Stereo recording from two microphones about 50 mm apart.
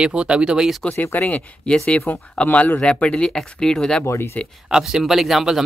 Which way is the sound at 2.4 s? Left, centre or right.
Left.